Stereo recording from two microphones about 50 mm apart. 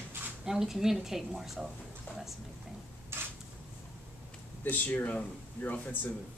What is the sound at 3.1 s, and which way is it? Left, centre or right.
Creak, right.